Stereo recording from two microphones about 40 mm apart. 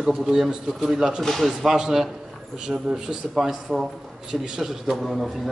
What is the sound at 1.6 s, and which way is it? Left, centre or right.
A man's voice, centre.